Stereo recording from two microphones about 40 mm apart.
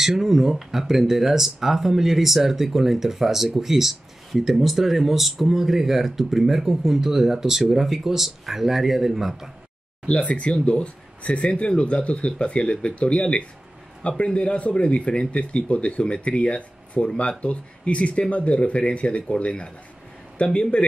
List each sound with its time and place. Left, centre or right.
0.0 s speech: centre
10.0 s speech: left